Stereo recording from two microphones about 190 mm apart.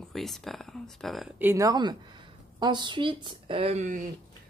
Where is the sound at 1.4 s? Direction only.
15° right (ahead or behind); by 4.0 s 35° right (ahead or behind).